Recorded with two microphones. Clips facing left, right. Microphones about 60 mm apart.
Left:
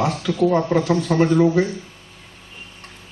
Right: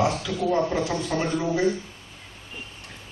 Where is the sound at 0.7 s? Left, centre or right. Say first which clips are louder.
Left 7 dB; left.